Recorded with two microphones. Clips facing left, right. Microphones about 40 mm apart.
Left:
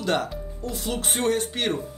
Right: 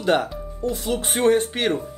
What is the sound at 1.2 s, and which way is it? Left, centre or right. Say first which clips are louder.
Speech: right 7 dB; right.